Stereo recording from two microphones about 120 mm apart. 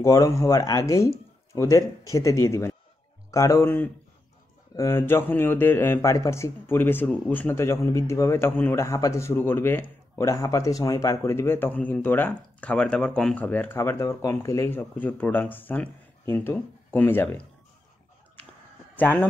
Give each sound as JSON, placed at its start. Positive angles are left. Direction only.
{"t": 0.0, "sound": "speech", "side_deg": 30}
{"t": 18.9, "sound": "a man's voice", "side_deg": 15}